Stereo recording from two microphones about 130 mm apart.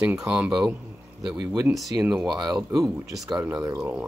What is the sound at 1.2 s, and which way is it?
Speech, 30° right (ahead or behind).